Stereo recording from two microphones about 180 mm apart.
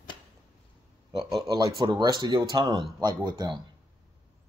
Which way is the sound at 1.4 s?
20° right (ahead or behind).